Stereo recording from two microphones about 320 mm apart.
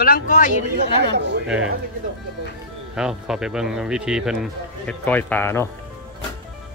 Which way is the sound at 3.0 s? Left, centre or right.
Centre.